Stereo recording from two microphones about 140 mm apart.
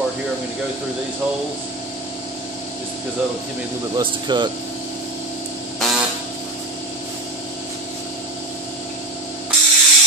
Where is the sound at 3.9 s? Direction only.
30° right (ahead or behind).